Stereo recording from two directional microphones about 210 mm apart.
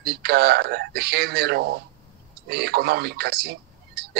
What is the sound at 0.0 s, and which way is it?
A man's voice, 50° right (ahead or behind).